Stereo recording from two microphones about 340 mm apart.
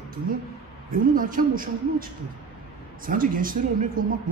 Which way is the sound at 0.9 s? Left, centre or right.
Right.